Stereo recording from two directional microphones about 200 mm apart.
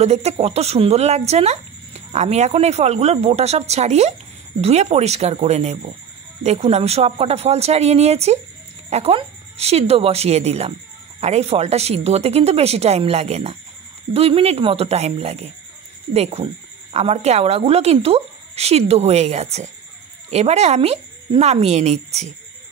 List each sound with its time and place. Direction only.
0.0 s speech: 30° right (ahead or behind)